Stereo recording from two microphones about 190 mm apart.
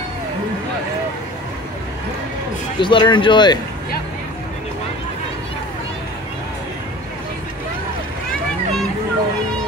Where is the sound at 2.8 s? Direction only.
25° left (ahead or behind).